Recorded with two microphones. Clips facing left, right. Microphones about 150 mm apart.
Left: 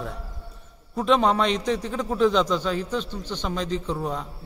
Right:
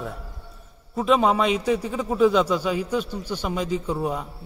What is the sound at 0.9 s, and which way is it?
A man's voice, 5° right (ahead or behind).